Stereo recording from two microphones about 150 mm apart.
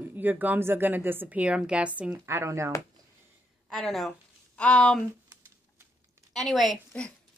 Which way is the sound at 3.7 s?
Centre (ahead or behind).